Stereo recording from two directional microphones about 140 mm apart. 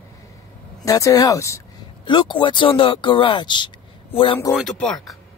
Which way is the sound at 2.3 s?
35° left (ahead or behind).